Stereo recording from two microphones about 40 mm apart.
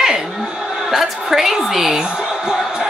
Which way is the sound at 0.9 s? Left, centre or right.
Centre.